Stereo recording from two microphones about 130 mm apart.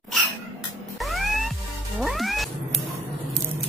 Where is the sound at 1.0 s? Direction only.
Centre (ahead or behind).